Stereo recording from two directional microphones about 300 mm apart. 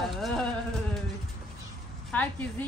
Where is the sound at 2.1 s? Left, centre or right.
Centre.